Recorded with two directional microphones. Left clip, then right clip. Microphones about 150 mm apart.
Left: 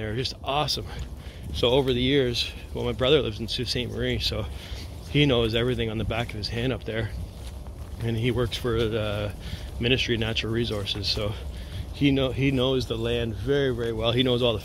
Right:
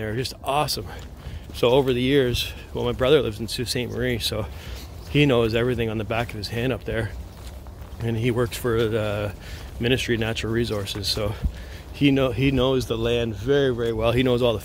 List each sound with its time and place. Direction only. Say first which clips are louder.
0.0 s speech: right 2 dB; 30° right (ahead or behind)